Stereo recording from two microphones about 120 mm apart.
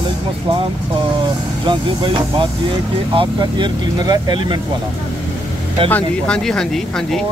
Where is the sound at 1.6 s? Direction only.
40° right (ahead or behind).